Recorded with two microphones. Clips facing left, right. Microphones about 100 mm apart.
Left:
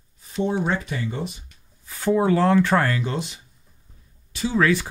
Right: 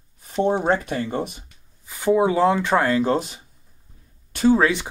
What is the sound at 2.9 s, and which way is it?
Speech, 40° right (ahead or behind).